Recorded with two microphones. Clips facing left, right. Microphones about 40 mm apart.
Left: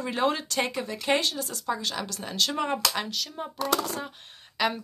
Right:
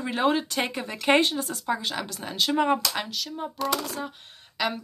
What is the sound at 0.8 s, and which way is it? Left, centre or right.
A woman's voice, right.